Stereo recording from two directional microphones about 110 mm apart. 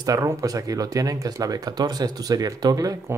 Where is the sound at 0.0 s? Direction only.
30° right (ahead or behind).